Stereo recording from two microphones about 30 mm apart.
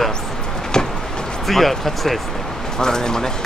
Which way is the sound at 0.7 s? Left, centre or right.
Left.